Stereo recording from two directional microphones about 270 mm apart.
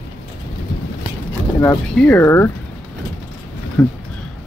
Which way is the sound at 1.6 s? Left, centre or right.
Centre.